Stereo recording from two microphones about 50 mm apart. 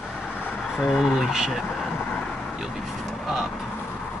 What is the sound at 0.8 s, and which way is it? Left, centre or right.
Speech, centre.